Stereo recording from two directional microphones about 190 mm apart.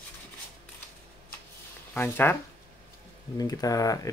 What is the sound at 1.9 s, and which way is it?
Speech, 10° left (ahead or behind).